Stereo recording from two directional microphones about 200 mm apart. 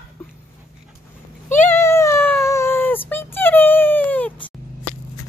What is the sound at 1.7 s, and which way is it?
Cat, 15° left (ahead or behind).